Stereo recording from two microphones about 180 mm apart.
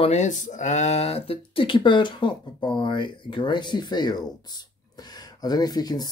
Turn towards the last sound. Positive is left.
turn(degrees=20)  # may be behind; listen again after turning